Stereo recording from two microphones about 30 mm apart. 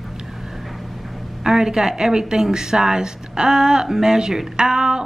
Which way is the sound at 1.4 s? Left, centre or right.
Centre.